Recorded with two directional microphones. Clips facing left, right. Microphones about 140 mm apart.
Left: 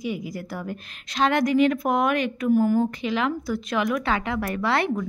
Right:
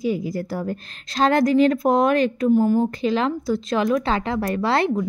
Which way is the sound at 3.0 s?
35° right (ahead or behind).